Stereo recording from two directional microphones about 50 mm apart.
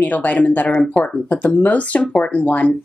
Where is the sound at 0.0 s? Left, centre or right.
Left.